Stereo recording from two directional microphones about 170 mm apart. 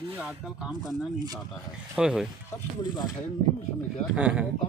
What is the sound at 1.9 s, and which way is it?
Speech, 5° right (ahead or behind).